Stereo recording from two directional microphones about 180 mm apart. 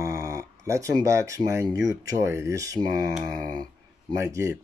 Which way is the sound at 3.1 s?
Centre (ahead or behind).